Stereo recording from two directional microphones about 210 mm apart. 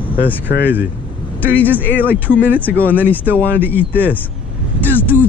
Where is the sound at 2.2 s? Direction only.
10° right (ahead or behind).